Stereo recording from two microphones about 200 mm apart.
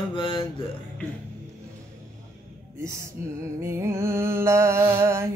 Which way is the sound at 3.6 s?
15° right (ahead or behind).